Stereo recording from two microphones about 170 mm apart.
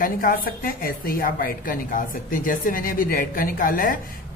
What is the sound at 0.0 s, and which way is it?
A woman's voice, 55° left (ahead or behind).